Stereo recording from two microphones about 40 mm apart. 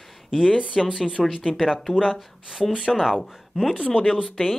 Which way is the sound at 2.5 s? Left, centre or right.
Centre.